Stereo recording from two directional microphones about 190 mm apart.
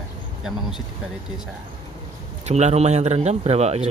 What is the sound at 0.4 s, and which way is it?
Speech, centre (ahead or behind).